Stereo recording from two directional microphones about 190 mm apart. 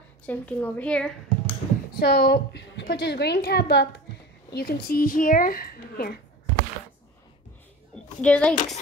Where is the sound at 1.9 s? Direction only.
55° left (ahead or behind).